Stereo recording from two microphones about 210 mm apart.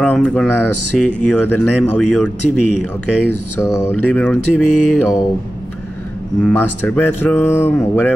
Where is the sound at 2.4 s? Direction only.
35° left (ahead or behind).